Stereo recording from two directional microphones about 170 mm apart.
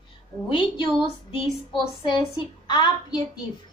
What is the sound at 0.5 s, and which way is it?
Speech, 30° left (ahead or behind).